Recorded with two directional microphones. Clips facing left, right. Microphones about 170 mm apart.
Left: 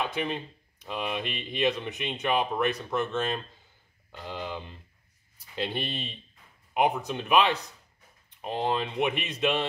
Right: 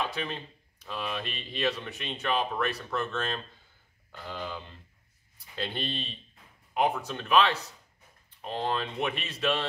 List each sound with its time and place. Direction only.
0.0 s speech: 15° left (ahead or behind)